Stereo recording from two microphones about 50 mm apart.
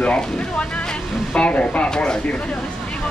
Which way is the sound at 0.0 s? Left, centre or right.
Left.